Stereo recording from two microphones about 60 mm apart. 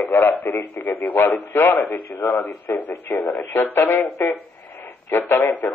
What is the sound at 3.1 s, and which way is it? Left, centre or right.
Speech, left.